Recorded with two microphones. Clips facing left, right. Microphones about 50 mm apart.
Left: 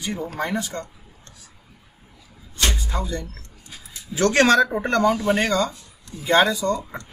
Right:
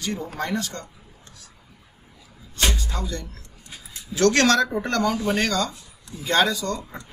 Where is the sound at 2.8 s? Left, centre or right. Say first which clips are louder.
Left 3 dB; centre.